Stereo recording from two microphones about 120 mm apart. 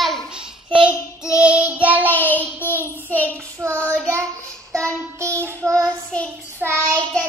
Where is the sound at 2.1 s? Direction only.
15° left (ahead or behind).